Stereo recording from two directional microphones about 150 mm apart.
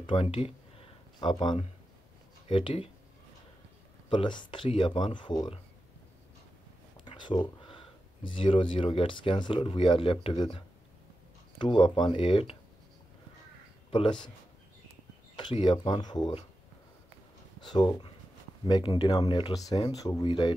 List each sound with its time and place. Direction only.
0.0 s speech: 35° left (ahead or behind)
4.1 s speech: 30° left (ahead or behind)
7.1 s speech: 30° left (ahead or behind)
13.8 s speech: 35° left (ahead or behind)
15.3 s speech: 35° left (ahead or behind)
17.6 s speech: 30° left (ahead or behind)